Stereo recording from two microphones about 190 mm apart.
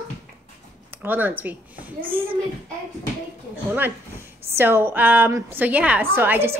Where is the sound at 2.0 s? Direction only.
30° right (ahead or behind).